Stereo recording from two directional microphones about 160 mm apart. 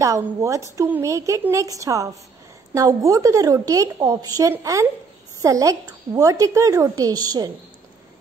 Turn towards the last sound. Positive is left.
turn(degrees=-25)  # may be behind; listen again after turning